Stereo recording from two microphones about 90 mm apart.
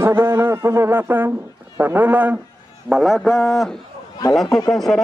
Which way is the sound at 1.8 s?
20° right (ahead or behind).